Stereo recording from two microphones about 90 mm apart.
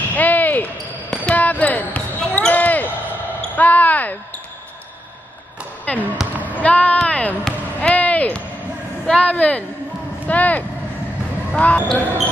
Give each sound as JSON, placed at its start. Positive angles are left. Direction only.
{"t": 0.1, "sound": "basketball bounce", "side_deg": 20}
{"t": 3.3, "sound": "speech", "side_deg": 20}
{"t": 5.9, "sound": "speech", "side_deg": 15}
{"t": 6.5, "sound": "basketball bounce", "side_deg": 15}
{"t": 9.0, "sound": "speech", "side_deg": 10}